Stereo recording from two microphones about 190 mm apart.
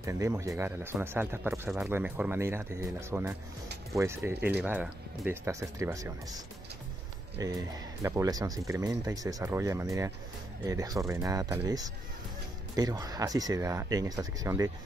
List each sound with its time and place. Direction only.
0.0 s speech: 15° right (ahead or behind)